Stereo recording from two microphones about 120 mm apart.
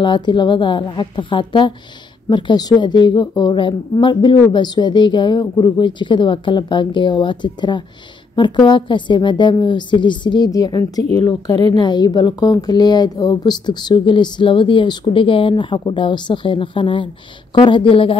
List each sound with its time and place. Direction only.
0.0 s a woman's voice: 40° left (ahead or behind)